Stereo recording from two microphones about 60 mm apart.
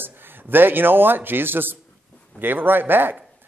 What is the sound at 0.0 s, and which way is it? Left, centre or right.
Speech, right.